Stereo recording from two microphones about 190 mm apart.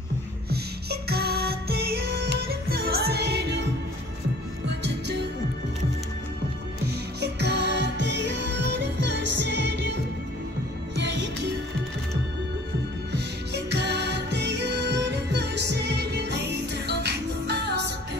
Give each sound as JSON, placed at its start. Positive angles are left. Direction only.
{"t": 0.5, "sound": "music", "side_deg": -55}
{"t": 4.6, "sound": "music", "side_deg": -65}
{"t": 6.9, "sound": "music", "side_deg": -60}
{"t": 13.7, "sound": "music", "side_deg": -60}